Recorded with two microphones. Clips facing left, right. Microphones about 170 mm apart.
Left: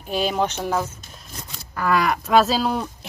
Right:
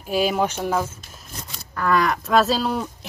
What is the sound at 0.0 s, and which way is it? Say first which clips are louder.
Speech: right 1 dB; 5° right (ahead or behind).